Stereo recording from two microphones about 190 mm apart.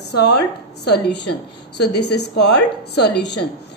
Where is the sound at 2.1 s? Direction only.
60° left (ahead or behind).